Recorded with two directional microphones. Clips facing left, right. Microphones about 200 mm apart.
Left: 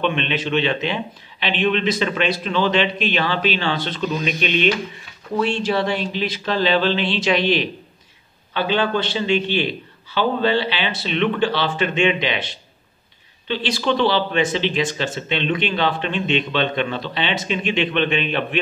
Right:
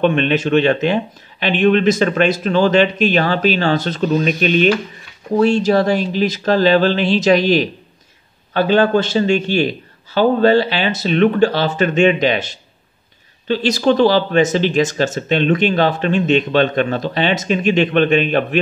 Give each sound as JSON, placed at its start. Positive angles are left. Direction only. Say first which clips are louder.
{"t": 0.0, "sound": "speech", "louder": "right 7 dB", "side_deg": -45}